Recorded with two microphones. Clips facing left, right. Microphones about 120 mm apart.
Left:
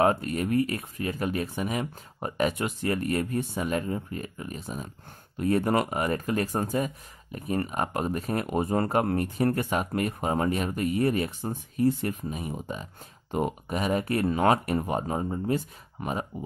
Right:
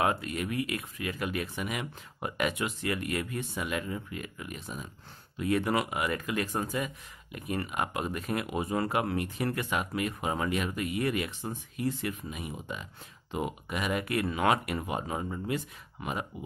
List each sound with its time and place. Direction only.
0.0 s speech: 40° left (ahead or behind)